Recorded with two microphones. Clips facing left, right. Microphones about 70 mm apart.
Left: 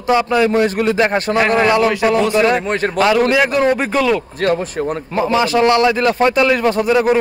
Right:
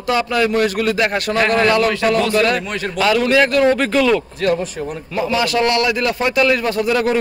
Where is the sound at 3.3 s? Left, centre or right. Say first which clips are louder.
Even; left.